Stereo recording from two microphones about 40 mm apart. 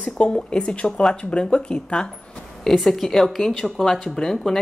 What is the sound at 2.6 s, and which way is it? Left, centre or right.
Speech, centre.